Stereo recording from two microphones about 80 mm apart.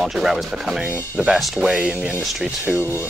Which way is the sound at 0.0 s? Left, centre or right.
Centre.